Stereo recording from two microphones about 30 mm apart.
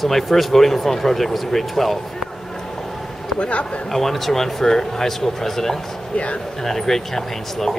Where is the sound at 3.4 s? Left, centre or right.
Left.